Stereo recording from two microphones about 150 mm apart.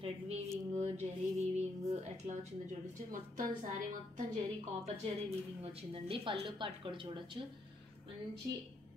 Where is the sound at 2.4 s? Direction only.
55° right (ahead or behind).